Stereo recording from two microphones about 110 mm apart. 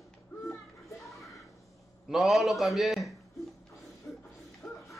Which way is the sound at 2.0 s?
Centre (ahead or behind).